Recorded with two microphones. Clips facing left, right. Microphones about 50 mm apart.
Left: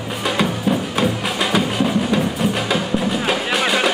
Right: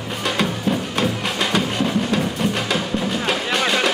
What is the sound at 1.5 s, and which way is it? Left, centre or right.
Music, centre.